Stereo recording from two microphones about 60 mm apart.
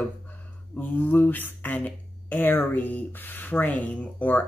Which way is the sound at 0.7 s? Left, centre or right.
Left.